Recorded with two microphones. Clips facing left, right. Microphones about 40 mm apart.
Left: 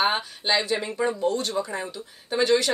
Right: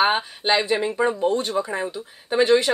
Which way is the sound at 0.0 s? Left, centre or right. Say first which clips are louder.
Right 4 dB; right.